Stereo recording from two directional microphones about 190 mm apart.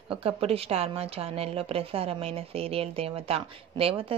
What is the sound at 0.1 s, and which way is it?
A woman's voice, 30° right (ahead or behind).